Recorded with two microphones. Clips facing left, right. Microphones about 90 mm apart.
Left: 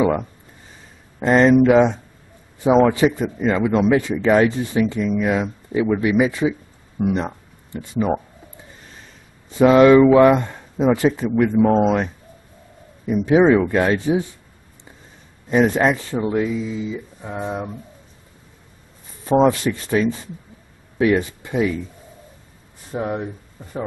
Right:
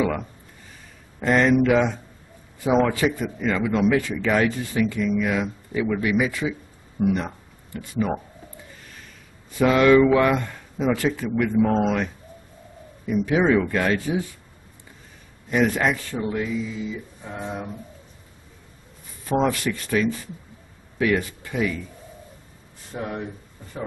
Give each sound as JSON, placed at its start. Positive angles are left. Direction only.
{"t": 0.0, "sound": "speech", "side_deg": 25}
{"t": 9.5, "sound": "a man's voice", "side_deg": 25}
{"t": 15.5, "sound": "speech", "side_deg": 25}
{"t": 19.2, "sound": "speech", "side_deg": 30}
{"t": 22.9, "sound": "speech", "side_deg": 25}